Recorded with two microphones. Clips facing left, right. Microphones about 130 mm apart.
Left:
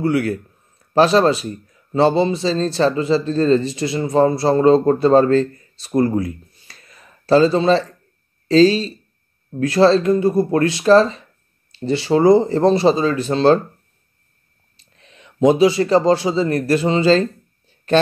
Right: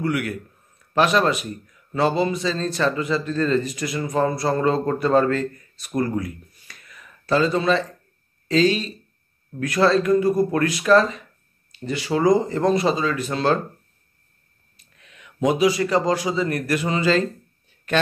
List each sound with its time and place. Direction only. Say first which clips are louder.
0.0 s speech: left 6 dB; 30° left (ahead or behind)
14.8 s speech: left 3 dB; 30° left (ahead or behind)